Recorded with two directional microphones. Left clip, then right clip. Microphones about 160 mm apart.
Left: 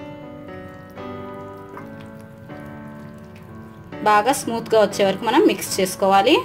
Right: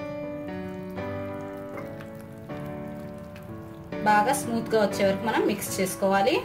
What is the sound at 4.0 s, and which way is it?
A woman's voice, 45° left (ahead or behind).